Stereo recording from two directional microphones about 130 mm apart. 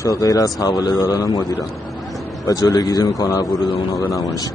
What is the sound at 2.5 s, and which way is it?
Speech, 25° left (ahead or behind).